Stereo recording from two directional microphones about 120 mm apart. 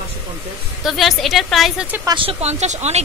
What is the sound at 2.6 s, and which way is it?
Speech, 70° right (ahead or behind).